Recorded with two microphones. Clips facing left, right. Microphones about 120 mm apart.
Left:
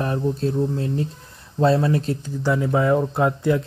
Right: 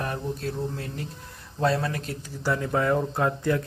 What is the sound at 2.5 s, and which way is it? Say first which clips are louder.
Speech: left 5 dB; 15° left (ahead or behind).